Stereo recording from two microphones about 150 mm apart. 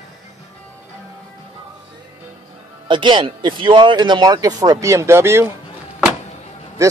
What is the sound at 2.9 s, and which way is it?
Speech, 30° right (ahead or behind).